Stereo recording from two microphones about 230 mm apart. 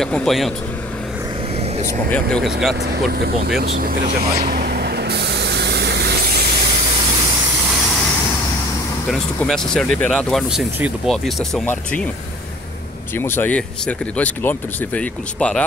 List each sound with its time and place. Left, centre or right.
0.0 s speech: centre
2.0 s speech: centre
3.1 s vehicle: right
9.1 s speech: centre
13.2 s speech: centre